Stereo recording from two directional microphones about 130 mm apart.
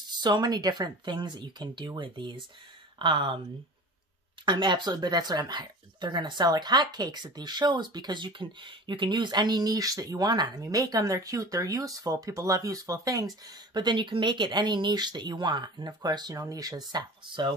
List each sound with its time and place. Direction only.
0.1 s speech: 35° right (ahead or behind)
4.5 s speech: 35° right (ahead or behind)
13.7 s speech: 35° right (ahead or behind)